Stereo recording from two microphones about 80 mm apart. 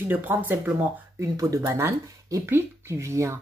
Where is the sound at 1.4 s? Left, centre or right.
Right.